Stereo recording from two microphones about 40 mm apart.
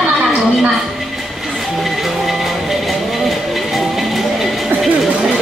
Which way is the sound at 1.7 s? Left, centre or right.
Centre.